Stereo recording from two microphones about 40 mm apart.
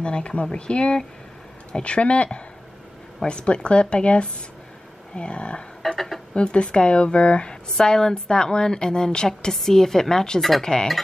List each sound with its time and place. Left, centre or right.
0.0 s a woman's voice: left
5.8 s a sound: centre
6.3 s a woman's voice: left
7.7 s a woman's voice: centre